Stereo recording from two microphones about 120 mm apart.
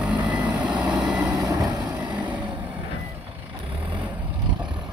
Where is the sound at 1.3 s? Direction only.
30° right (ahead or behind).